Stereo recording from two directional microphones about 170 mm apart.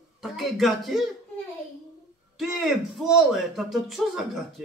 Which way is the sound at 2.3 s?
Centre (ahead or behind).